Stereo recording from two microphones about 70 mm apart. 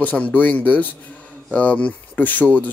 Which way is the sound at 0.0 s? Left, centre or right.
Left.